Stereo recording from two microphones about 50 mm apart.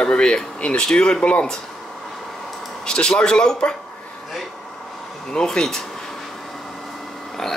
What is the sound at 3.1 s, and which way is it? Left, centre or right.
Speech, centre.